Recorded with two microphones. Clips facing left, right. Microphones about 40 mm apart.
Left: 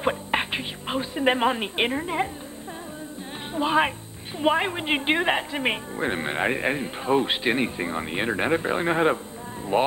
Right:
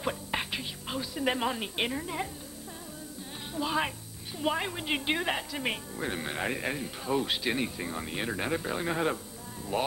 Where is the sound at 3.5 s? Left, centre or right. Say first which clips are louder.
Left 8 dB; left.